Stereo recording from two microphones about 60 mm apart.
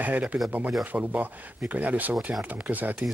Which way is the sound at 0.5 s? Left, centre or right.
Right.